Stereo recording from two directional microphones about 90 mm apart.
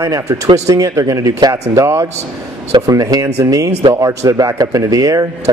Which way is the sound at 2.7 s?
40° right (ahead or behind).